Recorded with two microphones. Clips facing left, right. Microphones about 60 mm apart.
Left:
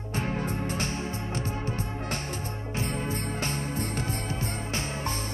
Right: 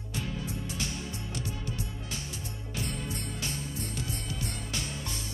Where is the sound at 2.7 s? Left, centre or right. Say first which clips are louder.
Left 5 dB; left.